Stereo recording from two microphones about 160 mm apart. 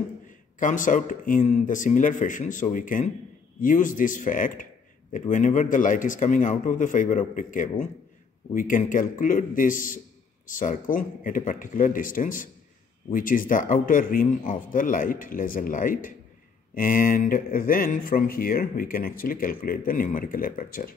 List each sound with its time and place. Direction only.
0.6 s speech: 55° left (ahead or behind)